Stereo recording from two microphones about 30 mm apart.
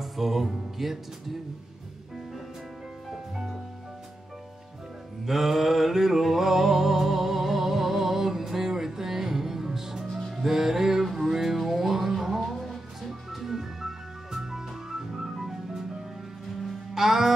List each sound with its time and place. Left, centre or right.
0.0 s music: centre
5.2 s music: centre
16.9 s music: centre